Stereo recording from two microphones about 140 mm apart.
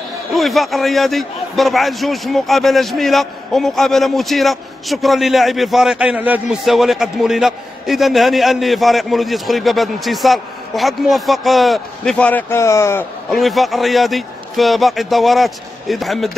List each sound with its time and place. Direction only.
0.3 s a man's voice: centre (ahead or behind); by 13.0 s 20° left (ahead or behind)
13.3 s a man's voice: centre (ahead or behind)